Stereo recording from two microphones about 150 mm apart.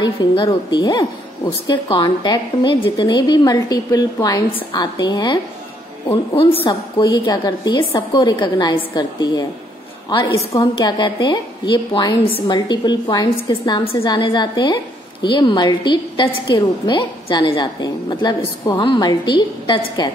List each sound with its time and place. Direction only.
0.0 s a woman's voice: 30° left (ahead or behind)